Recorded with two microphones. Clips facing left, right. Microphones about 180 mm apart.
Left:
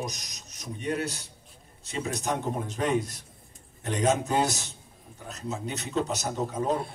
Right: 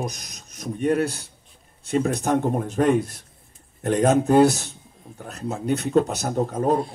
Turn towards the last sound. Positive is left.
turn(degrees=-55)  # may be behind; listen again after turning